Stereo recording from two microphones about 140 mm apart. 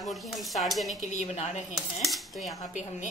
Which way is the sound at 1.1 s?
55° left (ahead or behind).